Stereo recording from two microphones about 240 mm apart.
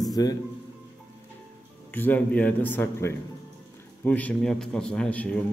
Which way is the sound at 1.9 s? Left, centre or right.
Centre.